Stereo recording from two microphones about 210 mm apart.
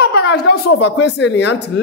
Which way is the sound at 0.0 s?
50° left (ahead or behind).